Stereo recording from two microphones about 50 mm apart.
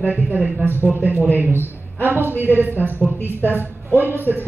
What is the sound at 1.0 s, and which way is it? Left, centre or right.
Speech, right.